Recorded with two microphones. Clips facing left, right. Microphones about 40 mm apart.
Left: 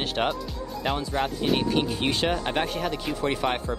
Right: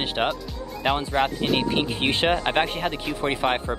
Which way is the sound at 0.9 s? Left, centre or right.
Right.